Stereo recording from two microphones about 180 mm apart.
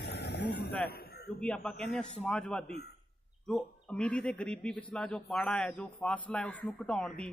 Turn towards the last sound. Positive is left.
turn(degrees=5)  # may be behind; listen again after turning